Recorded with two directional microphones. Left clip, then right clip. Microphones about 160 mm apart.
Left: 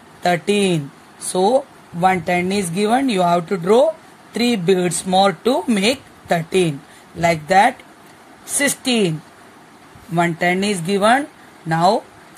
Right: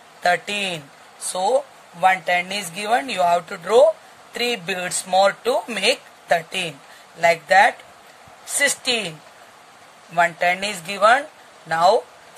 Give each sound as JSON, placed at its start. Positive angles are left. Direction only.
{"t": 0.2, "sound": "speech", "side_deg": 10}
{"t": 10.1, "sound": "speech", "side_deg": 15}